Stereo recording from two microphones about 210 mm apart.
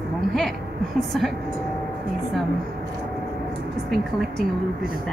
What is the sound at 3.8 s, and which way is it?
Speech, centre (ahead or behind).